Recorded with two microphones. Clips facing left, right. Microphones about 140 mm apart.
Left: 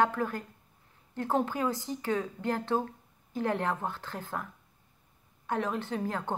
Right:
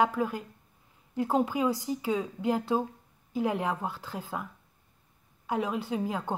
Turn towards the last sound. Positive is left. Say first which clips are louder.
# right 2 dB
turn(degrees=-10)  # may be behind; listen again after turning